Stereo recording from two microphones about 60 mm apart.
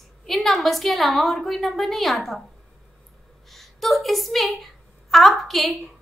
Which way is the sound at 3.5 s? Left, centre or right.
Centre.